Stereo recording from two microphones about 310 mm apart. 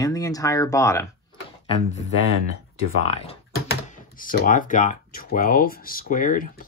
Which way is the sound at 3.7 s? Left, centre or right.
Left.